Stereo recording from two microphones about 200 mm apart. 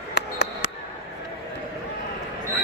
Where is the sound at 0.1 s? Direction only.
55° left (ahead or behind).